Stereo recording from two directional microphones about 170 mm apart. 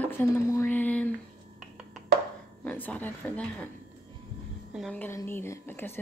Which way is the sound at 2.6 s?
10° left (ahead or behind).